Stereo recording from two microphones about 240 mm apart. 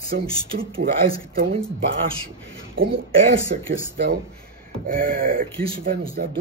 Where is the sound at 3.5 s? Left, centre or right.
Right.